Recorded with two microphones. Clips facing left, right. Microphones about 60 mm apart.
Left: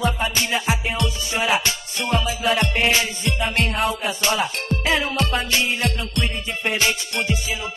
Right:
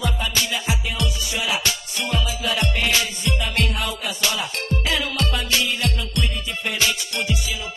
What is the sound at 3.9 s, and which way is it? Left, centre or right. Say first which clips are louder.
Music: left 3 dB; left.